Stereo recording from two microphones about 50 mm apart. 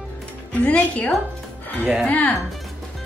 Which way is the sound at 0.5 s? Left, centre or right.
Left.